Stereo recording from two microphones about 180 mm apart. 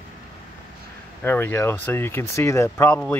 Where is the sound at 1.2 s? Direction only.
10° left (ahead or behind).